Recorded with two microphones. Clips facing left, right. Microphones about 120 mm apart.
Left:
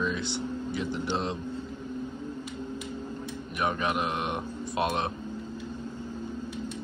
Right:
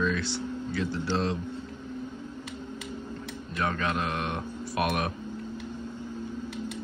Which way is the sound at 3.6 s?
20° left (ahead or behind).